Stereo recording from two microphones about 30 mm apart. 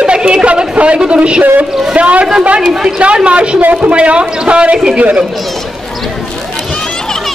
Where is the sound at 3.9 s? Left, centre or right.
Right.